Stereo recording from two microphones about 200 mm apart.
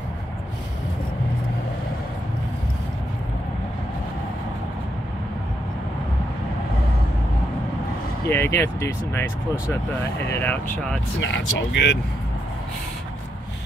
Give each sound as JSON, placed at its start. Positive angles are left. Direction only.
{"t": 8.3, "sound": "speech", "side_deg": 10}
{"t": 11.1, "sound": "speech", "side_deg": 65}